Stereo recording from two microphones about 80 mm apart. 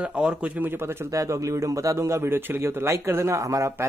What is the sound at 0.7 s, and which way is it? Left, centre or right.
Speech, right.